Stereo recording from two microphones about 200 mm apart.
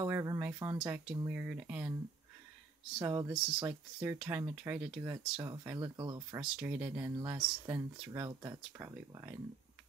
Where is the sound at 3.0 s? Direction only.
20° right (ahead or behind).